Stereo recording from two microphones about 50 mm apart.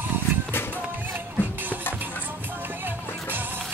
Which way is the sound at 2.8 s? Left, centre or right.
Right.